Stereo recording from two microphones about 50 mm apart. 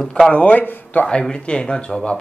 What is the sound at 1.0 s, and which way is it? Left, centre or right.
Speech, centre.